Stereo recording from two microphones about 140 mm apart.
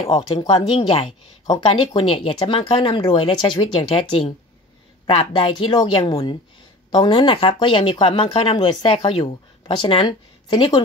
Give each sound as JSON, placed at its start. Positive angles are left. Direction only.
{"t": 0.1, "sound": "speech", "side_deg": 30}
{"t": 0.5, "sound": "speech", "side_deg": 45}
{"t": 1.4, "sound": "speech", "side_deg": 35}